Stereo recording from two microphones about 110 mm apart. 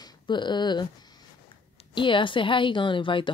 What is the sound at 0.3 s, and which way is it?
Speech, 45° left (ahead or behind).